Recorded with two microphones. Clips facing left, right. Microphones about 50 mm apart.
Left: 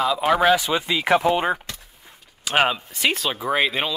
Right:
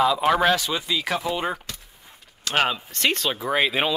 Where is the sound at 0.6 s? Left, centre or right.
Centre.